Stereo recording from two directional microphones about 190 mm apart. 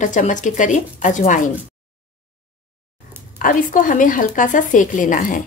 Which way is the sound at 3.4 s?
45° left (ahead or behind).